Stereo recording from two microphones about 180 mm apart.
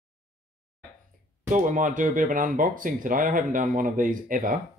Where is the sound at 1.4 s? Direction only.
45° right (ahead or behind).